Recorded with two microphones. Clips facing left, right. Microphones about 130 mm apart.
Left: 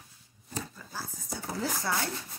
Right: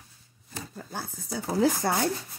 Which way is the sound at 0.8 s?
65° right (ahead or behind).